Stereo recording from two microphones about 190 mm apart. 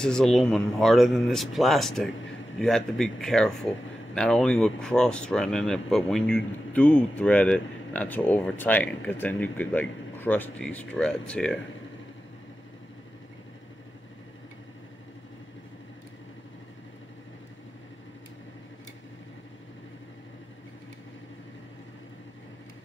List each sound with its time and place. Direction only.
0.0 s speech: 5° left (ahead or behind)